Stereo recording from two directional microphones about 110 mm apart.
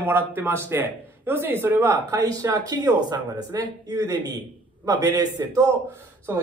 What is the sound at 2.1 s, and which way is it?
A man's voice, 35° right (ahead or behind).